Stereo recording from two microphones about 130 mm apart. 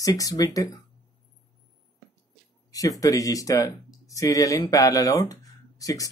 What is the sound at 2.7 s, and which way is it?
Speech, 25° left (ahead or behind).